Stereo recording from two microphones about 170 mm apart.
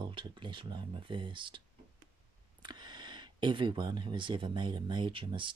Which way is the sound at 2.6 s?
25° right (ahead or behind).